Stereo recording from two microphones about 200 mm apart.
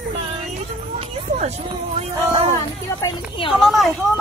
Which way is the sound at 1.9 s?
30° right (ahead or behind).